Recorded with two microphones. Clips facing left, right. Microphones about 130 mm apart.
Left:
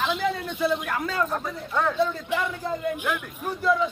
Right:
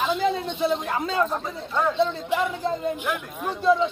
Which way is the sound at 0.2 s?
20° right (ahead or behind).